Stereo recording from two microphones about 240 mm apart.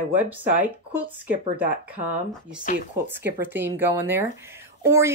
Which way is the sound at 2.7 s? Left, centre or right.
Left.